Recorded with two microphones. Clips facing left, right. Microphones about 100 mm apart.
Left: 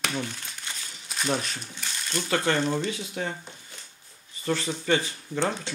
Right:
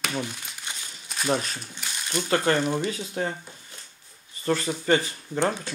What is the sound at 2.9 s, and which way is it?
Speech, 35° right (ahead or behind).